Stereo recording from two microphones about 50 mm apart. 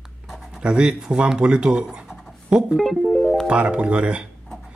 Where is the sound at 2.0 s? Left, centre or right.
Centre.